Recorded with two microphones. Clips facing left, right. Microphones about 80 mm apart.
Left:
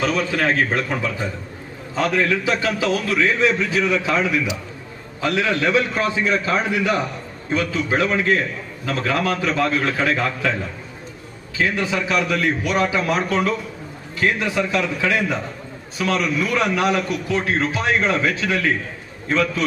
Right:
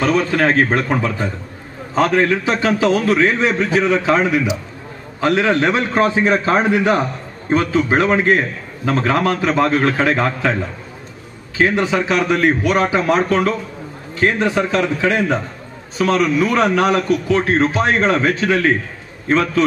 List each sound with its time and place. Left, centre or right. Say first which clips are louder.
0.0 s a man's voice: right 5 dB; right
11.6 s a man's voice: right 5 dB; right